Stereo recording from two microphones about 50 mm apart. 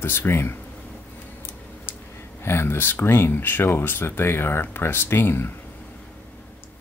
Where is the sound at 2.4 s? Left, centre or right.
Left.